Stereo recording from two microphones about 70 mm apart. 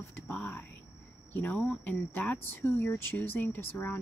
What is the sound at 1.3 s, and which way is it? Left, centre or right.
Speech, left.